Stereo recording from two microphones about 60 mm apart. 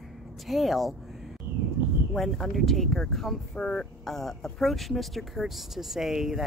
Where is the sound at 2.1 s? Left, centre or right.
Centre.